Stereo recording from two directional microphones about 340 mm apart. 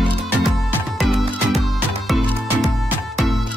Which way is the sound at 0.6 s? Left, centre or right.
Centre.